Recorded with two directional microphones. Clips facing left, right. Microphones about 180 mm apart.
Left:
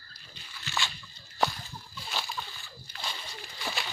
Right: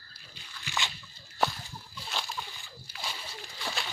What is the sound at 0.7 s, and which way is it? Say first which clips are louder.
Splash: left 1 dB; 20° right (ahead or behind).